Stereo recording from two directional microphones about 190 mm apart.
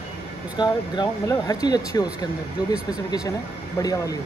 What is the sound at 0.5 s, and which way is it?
A man's voice, 20° left (ahead or behind).